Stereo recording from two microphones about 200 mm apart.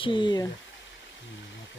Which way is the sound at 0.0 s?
25° left (ahead or behind).